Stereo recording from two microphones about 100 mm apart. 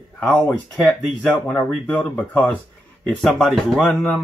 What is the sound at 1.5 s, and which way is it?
Speech, 15° left (ahead or behind).